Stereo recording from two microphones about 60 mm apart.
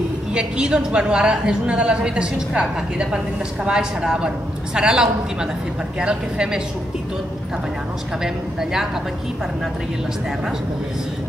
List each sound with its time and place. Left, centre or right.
0.3 s a woman's voice: centre
8.2 s a woman's voice: centre